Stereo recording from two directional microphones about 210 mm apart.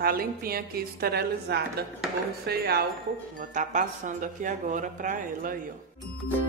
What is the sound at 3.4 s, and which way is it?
Speech, 40° right (ahead or behind).